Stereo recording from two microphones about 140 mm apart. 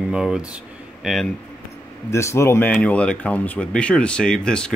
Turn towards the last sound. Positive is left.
turn(degrees=5)  # may be behind; listen again after turning